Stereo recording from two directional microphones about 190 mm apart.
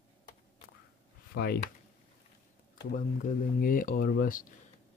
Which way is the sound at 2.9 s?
45° left (ahead or behind).